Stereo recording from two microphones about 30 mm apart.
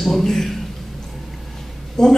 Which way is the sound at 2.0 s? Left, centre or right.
Left.